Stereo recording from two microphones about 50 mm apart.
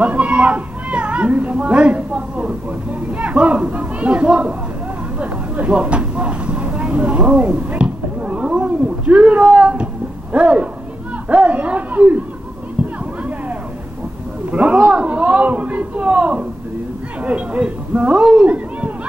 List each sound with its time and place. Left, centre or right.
0.0 s a man's voice: right
5.2 s vehicle: right
10.3 s a man's voice: right
14.5 s a man's voice: right
18.2 s speech: centre